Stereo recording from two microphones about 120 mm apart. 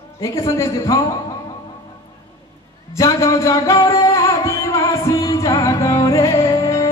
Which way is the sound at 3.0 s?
25° left (ahead or behind).